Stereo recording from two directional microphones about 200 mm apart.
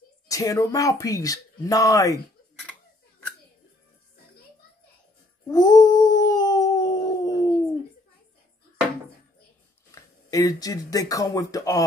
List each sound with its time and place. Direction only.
0.3 s speech: 15° left (ahead or behind)
5.5 s dog: 20° left (ahead or behind)
9.8 s speech: 15° left (ahead or behind)